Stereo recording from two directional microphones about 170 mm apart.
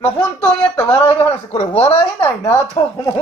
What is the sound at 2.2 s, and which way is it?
Speech, 20° left (ahead or behind).